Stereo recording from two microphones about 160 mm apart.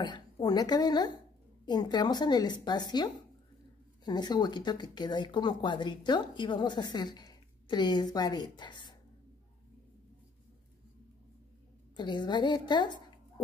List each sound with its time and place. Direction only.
0.0 s speech: 25° left (ahead or behind)
12.0 s speech: 30° left (ahead or behind)